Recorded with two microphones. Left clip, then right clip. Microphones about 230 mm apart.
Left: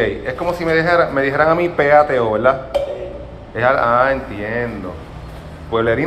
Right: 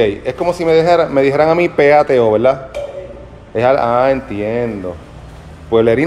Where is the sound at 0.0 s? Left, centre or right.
Right.